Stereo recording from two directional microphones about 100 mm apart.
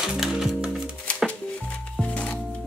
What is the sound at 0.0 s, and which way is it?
Music, 5° right (ahead or behind).